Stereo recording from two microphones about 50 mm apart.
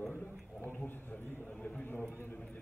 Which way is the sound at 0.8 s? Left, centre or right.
Left.